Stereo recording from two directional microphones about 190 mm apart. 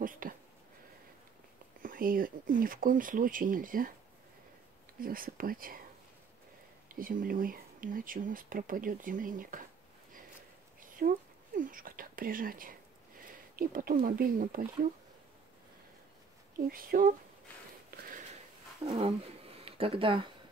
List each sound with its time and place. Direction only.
0.2 s a sound: 45° right (ahead or behind)
1.8 s speech: 45° right (ahead or behind)
5.0 s speech: 50° right (ahead or behind)
7.0 s speech: 50° right (ahead or behind)
10.8 s whispering: 45° right (ahead or behind)
13.6 s speech: 50° right (ahead or behind)
16.6 s speech: 50° right (ahead or behind)
17.9 s a sound: 50° right (ahead or behind)
18.9 s speech: 30° right (ahead or behind)